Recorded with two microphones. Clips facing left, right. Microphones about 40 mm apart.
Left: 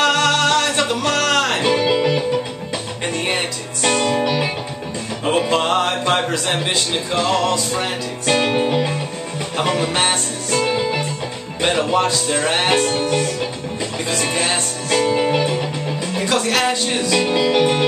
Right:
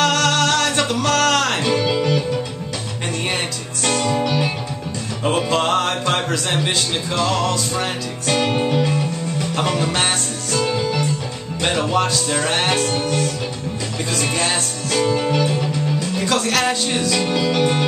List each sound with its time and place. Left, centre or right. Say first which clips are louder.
0.0 s music: left 1 dB; centre
1.6 s music: left 2 dB; centre
5.2 s speech: left 1 dB; centre
10.6 s music: even; left
11.6 s speech: left 2 dB; centre; by 15.5 s left
15.5 s music: right 1 dB; centre
16.3 s speech: left 1 dB; centre